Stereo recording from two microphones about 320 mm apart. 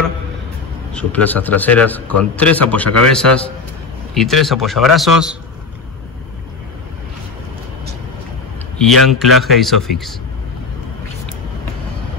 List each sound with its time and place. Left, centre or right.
0.9 s a man's voice: centre
8.8 s a man's voice: centre